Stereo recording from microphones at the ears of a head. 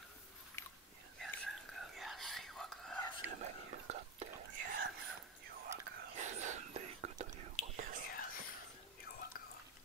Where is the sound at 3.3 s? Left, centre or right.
Right.